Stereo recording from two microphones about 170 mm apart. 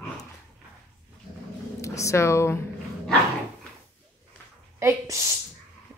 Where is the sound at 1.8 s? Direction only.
20° left (ahead or behind).